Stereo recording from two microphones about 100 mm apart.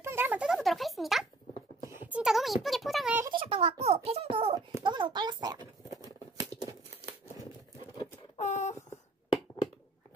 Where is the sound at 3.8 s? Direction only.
90° right; by 4.6 s 70° right (ahead or behind).